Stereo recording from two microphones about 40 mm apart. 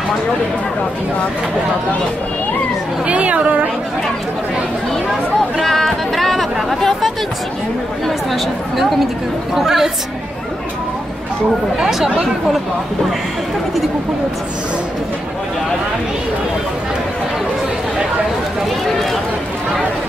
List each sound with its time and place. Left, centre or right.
3.1 s a woman's voice: right
5.6 s speech: centre
8.3 s a woman's voice: centre